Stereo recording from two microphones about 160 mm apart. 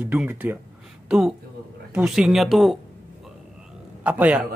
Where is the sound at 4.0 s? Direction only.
10° right (ahead or behind).